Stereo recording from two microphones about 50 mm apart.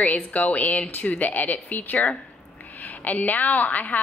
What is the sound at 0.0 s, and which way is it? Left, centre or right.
A woman's voice, left.